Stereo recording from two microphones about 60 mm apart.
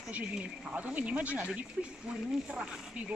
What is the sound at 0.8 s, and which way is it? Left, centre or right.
Speech, right.